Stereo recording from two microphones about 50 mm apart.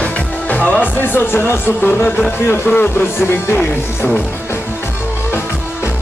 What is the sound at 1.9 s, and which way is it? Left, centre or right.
Speech, centre.